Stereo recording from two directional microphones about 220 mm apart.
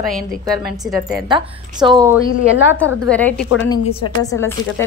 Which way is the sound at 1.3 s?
20° right (ahead or behind).